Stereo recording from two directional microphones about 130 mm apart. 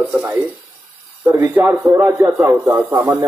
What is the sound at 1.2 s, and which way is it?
Speech, 20° right (ahead or behind).